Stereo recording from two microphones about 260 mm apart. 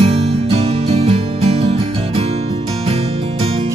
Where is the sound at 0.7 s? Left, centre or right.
Right.